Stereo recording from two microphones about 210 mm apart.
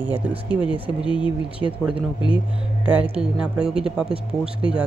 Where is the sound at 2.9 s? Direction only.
5° right (ahead or behind).